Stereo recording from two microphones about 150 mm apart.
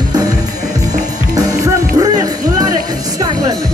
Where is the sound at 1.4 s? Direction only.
25° right (ahead or behind).